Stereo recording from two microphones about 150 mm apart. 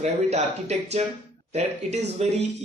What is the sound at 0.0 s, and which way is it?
Speech, 45° right (ahead or behind).